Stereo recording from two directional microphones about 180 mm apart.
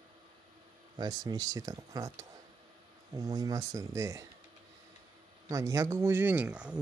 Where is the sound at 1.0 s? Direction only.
20° right (ahead or behind).